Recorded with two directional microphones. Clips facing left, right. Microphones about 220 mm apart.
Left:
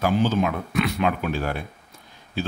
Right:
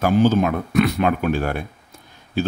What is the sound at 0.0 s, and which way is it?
A man's voice, 45° right (ahead or behind).